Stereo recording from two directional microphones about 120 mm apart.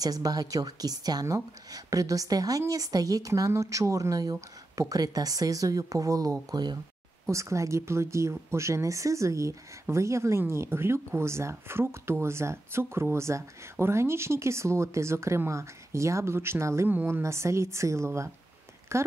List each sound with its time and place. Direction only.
0.0 s a woman's voice: 30° right (ahead or behind)